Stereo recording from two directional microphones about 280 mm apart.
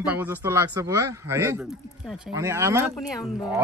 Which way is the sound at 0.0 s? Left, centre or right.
Centre.